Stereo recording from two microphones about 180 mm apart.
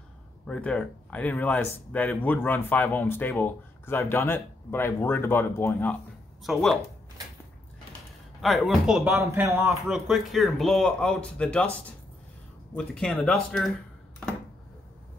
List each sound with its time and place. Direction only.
0.5 s a man's voice: 5° left (ahead or behind)
8.4 s a man's voice: centre (ahead or behind)
9.7 s a man's voice: centre (ahead or behind)
12.7 s a man's voice: 5° left (ahead or behind)